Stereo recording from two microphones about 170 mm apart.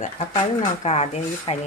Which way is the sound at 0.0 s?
45° left (ahead or behind).